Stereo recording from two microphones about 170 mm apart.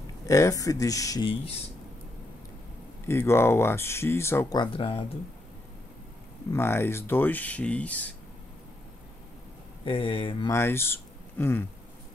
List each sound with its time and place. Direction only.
0.3 s speech: 20° left (ahead or behind)
3.1 s speech: 15° left (ahead or behind); by 5.0 s 30° left (ahead or behind)
6.5 s speech: 15° left (ahead or behind)
9.8 s speech: 30° left (ahead or behind)
10.5 s speech: 15° left (ahead or behind)